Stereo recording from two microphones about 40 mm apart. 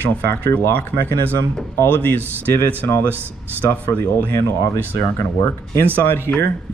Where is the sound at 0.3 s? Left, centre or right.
Left.